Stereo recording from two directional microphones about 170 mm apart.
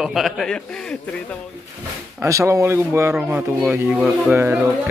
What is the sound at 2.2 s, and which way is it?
Speech, 15° right (ahead or behind).